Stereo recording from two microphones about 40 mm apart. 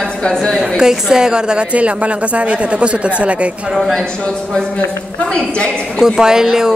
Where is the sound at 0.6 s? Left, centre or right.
Centre; by 3.4 s right.